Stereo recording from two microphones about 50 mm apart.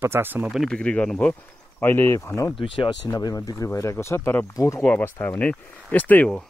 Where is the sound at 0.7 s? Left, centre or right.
Left.